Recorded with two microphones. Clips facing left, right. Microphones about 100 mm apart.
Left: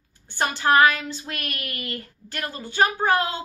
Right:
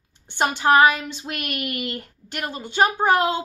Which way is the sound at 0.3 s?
20° right (ahead or behind).